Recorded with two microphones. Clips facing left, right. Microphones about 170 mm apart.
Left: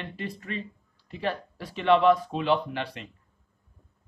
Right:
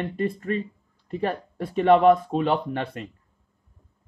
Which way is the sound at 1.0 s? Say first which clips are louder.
Right 4 dB; 45° right (ahead or behind).